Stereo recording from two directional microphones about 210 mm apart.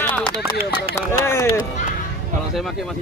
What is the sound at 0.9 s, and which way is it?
Speech, 10° left (ahead or behind).